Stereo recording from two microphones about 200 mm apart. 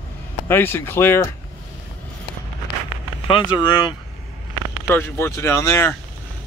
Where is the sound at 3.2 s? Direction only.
25° left (ahead or behind).